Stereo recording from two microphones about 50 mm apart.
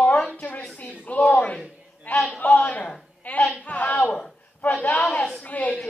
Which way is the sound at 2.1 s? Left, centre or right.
Left.